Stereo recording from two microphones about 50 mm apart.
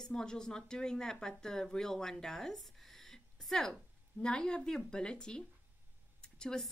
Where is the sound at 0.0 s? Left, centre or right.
Centre.